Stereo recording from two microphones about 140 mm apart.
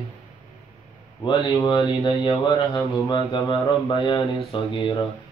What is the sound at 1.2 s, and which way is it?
A man's voice, 35° left (ahead or behind).